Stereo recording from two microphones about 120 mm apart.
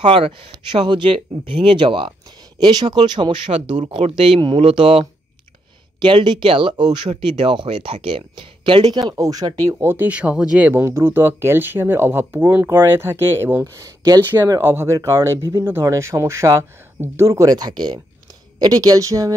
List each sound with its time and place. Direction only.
0.0 s speech: 45° right (ahead or behind)
3.7 s speech: 65° right (ahead or behind)
4.1 s speech: 45° right (ahead or behind)
9.1 s speech: 30° right (ahead or behind)
9.8 s speech: 15° right (ahead or behind)
10.7 s speech: 20° right (ahead or behind)
14.3 s speech: 20° right (ahead or behind)